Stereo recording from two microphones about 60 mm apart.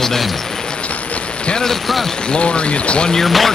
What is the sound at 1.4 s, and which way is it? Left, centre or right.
Speech, centre.